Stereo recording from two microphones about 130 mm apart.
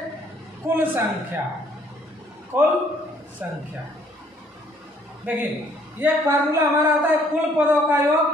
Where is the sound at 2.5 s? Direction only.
15° right (ahead or behind).